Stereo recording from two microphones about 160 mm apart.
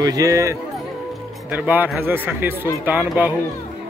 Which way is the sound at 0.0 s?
20° right (ahead or behind).